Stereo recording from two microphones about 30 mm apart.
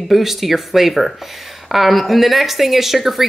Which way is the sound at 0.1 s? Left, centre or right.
Centre.